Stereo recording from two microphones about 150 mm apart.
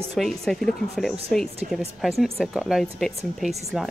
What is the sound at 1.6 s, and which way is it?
Speech, 60° right (ahead or behind).